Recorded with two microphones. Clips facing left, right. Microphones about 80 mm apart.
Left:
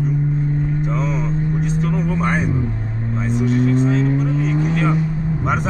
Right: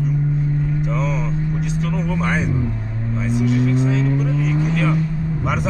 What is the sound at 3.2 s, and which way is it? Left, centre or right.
Cattle, centre.